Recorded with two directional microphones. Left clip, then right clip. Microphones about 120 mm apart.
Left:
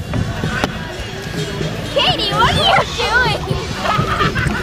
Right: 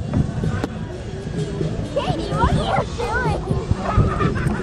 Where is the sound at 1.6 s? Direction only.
15° left (ahead or behind).